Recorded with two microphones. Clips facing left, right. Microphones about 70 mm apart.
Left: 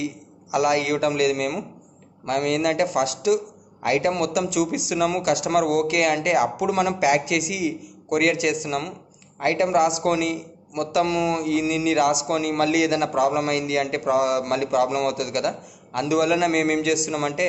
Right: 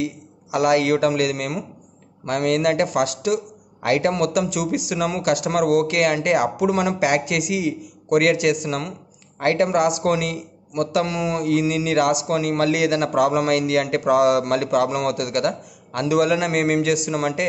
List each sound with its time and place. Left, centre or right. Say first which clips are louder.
0.0 s a man's voice: right 3 dB; right
11.7 s a man's voice: right 1 dB; right